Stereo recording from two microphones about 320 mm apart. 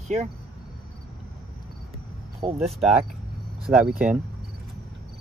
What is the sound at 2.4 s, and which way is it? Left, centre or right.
Speech, centre.